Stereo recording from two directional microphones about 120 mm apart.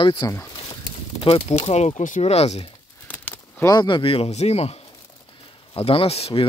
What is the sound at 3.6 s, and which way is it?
Speech, 40° left (ahead or behind).